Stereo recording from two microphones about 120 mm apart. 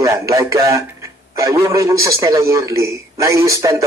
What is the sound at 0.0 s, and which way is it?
Speech, 25° right (ahead or behind).